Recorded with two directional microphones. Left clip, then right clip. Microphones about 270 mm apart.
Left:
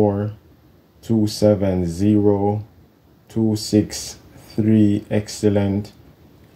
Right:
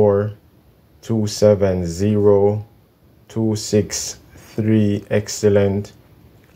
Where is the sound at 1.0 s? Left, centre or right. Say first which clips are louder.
Right 2 dB; centre.